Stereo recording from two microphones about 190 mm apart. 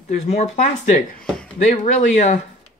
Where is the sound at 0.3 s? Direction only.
35° left (ahead or behind).